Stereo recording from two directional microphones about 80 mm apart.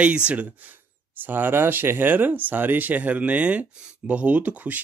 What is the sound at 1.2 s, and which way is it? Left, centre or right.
Speech, right.